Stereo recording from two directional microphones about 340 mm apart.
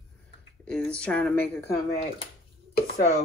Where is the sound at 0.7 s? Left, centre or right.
Centre.